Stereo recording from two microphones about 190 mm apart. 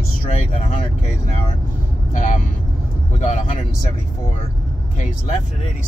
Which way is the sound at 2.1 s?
40° left (ahead or behind).